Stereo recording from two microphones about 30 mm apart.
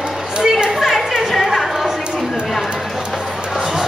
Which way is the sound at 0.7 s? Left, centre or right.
Centre.